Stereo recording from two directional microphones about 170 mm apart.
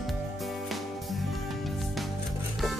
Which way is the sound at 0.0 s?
Centre (ahead or behind).